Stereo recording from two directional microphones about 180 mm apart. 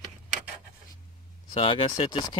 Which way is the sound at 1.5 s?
30° left (ahead or behind).